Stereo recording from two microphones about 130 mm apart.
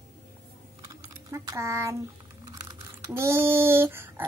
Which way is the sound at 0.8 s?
25° right (ahead or behind).